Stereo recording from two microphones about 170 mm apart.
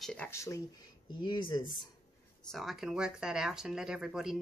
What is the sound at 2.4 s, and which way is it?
Speech, centre (ahead or behind).